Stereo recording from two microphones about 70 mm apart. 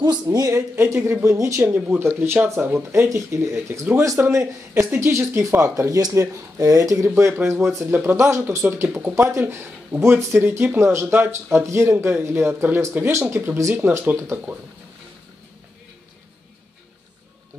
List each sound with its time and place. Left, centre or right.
0.0 s speech: right
0.5 s speech: right
1.7 s speech: right
7.3 s speech: right
13.8 s speech: right
14.3 s speech: right